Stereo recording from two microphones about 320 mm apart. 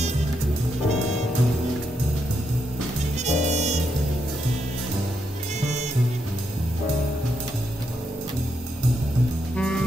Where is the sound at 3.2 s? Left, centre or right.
Right.